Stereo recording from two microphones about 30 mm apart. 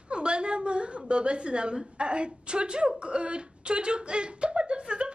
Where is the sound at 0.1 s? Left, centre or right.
Right.